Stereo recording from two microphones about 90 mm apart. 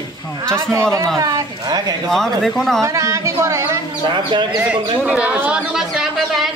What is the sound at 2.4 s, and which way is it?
Speech, 5° left (ahead or behind).